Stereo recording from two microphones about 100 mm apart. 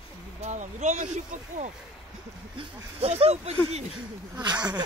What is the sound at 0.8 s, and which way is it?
Speech, 90° right.